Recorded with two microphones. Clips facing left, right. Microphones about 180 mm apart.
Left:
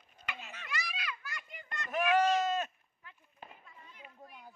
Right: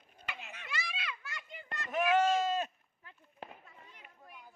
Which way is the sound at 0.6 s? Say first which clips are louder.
Left 1 dB; 25° right (ahead or behind).